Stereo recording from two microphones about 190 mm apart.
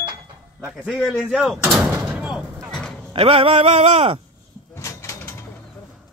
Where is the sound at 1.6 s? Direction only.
15° right (ahead or behind).